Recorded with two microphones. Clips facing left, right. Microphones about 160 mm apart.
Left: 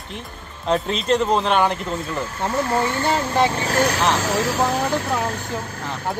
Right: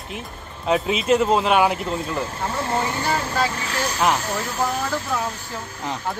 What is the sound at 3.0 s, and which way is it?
Speech, 25° left (ahead or behind).